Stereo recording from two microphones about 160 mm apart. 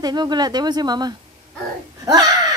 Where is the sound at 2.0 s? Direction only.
25° right (ahead or behind).